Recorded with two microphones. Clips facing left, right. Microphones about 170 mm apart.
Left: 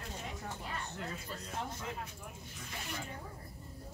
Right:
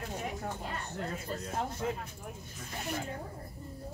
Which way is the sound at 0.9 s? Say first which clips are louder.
Right 6 dB; 45° right (ahead or behind).